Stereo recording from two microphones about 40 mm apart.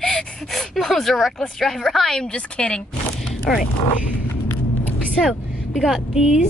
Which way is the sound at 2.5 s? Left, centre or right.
Left.